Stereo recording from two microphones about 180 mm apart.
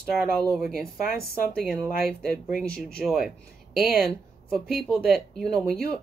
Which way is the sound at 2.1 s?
5° left (ahead or behind).